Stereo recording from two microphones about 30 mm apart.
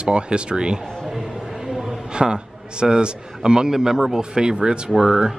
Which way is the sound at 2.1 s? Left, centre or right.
Right.